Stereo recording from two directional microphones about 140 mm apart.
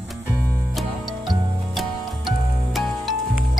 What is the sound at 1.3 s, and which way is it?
Music, centre (ahead or behind).